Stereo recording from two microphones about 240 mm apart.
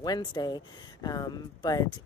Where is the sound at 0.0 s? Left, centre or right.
Centre.